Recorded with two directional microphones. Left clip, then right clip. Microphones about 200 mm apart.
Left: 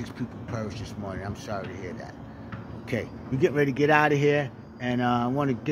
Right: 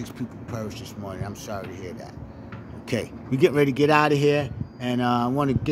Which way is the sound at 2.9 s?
40° right (ahead or behind).